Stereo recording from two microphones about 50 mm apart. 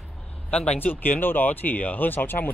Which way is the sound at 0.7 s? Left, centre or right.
Left.